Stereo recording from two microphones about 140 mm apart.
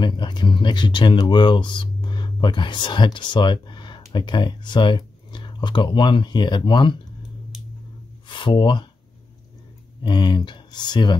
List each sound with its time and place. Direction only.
0.0 s speech: 35° left (ahead or behind)
8.3 s speech: 35° left (ahead or behind)
10.0 s speech: 30° left (ahead or behind)